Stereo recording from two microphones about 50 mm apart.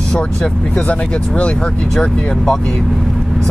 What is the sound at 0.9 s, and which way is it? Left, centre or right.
Speech, left.